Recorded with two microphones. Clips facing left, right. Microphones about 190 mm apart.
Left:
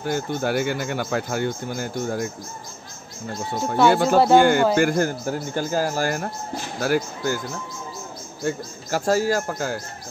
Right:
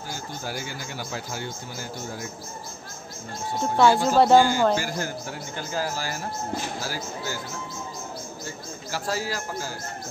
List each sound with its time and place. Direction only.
0.0 s speech: 60° left (ahead or behind)
3.9 s a man's voice: 60° left (ahead or behind)
8.5 s a man's voice: 45° left (ahead or behind)